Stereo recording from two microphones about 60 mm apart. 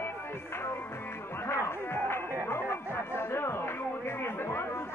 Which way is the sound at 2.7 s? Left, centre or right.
Left.